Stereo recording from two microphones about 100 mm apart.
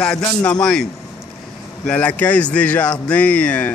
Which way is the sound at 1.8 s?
10° left (ahead or behind).